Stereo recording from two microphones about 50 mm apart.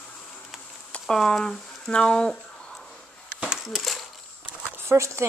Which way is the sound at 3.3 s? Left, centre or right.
Centre.